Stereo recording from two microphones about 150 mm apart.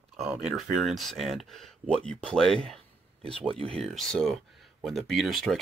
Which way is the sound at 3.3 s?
40° right (ahead or behind).